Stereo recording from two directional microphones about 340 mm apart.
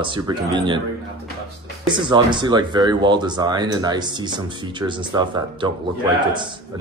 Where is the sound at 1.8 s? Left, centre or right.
Centre.